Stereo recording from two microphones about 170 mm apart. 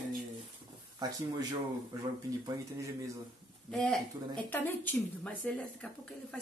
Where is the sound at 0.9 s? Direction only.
25° right (ahead or behind).